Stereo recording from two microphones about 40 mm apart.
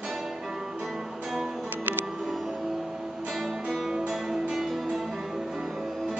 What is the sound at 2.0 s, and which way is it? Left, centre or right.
Music, right.